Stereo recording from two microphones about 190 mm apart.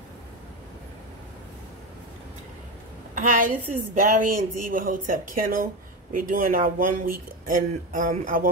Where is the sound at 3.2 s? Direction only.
45° right (ahead or behind).